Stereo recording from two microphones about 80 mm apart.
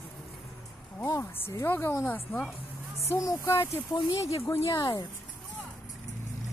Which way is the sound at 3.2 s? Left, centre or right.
Left.